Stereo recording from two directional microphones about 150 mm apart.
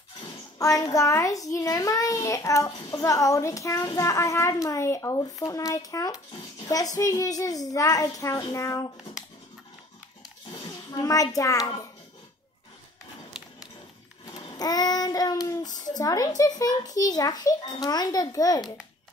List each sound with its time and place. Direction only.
0.6 s a child's voice: 25° left (ahead or behind)
10.7 s a child's voice: 25° left (ahead or behind)
14.2 s child singing: 25° left (ahead or behind)
15.8 s a child's voice: 25° left (ahead or behind)